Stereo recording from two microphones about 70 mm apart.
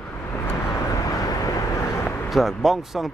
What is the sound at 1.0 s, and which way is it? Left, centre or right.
Vehicle, left.